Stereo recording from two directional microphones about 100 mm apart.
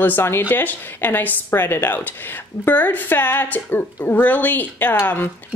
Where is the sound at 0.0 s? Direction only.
20° left (ahead or behind).